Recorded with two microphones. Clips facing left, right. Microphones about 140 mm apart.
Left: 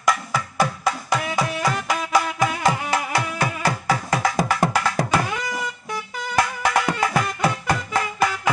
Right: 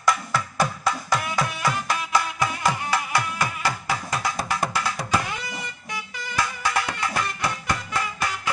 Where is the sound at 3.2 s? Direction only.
55° left (ahead or behind); by 5.6 s 90° left.